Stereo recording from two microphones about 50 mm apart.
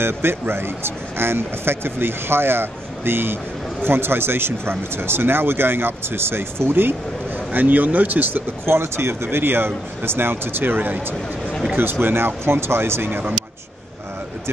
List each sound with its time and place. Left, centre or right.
0.0 s speech: right
8.6 s speech: right